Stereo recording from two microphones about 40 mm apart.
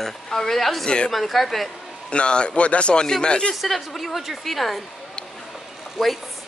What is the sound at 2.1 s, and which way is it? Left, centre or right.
Speech, left.